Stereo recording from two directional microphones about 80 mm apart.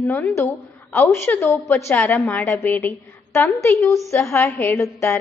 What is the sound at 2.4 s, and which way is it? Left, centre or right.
Speech, left.